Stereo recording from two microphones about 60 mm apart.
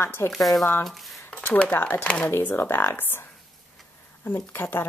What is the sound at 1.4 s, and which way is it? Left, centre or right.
Speech, left.